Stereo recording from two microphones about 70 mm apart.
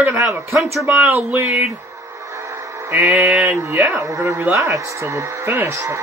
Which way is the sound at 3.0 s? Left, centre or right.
Centre.